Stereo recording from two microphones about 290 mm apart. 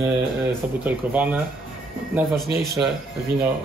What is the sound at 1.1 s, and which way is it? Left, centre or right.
Speech, centre.